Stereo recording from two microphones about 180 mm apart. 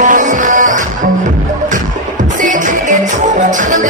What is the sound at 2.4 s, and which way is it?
Music, 45° right (ahead or behind).